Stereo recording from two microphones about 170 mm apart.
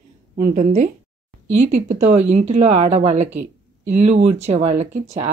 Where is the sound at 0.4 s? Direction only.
45° right (ahead or behind).